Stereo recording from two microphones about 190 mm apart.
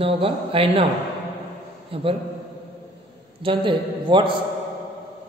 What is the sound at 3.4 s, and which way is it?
Speech, 25° right (ahead or behind).